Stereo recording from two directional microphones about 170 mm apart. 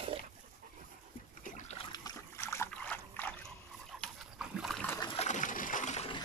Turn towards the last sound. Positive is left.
turn(degrees=45)  # may be behind; listen again after turning